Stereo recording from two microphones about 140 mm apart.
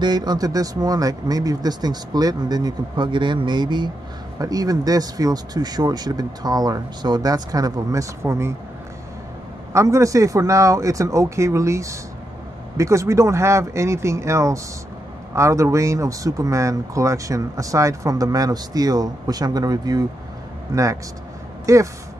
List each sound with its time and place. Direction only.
0.0 s speech: 30° right (ahead or behind)
9.7 s speech: 20° right (ahead or behind)